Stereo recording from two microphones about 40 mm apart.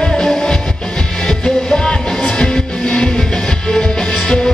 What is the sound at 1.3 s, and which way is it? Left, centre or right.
Music, centre.